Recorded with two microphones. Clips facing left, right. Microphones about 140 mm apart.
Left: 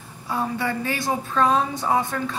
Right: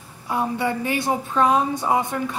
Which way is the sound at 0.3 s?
15° right (ahead or behind).